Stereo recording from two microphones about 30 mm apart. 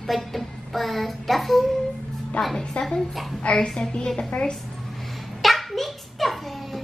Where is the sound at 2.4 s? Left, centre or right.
Left.